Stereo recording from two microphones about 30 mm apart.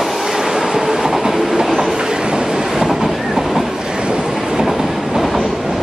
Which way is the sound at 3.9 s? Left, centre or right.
Right.